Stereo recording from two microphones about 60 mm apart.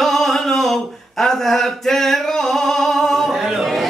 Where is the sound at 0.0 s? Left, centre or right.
Centre.